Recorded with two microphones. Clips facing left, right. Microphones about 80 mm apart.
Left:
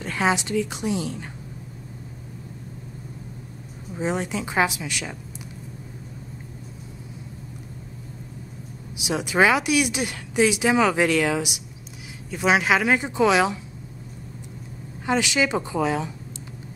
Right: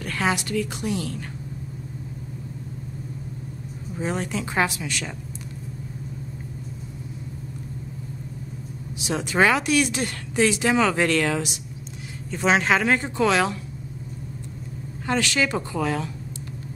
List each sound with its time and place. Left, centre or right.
0.0 s a woman's voice: centre
3.9 s speech: centre
8.9 s speech: centre
15.0 s speech: centre